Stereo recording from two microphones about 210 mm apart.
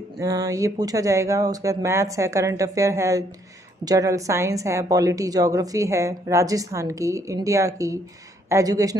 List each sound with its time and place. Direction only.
0.2 s a woman's voice: 15° right (ahead or behind)